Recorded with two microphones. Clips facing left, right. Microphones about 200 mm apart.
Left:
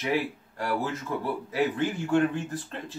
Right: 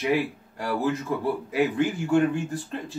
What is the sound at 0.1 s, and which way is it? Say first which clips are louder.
A man's voice: even; 15° right (ahead or behind).